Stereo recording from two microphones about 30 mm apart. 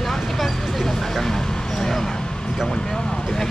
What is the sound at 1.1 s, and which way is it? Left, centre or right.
Vehicle, centre.